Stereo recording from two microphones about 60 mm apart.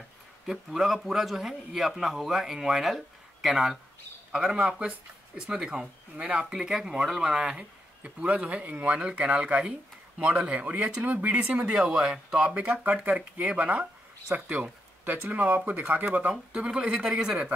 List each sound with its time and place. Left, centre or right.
0.5 s speech: centre
6.5 s speech: centre